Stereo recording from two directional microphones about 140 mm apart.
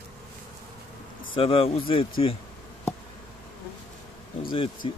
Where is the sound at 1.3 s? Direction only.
40° left (ahead or behind).